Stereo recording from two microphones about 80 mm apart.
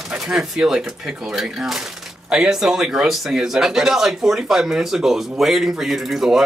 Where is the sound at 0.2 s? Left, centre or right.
Centre.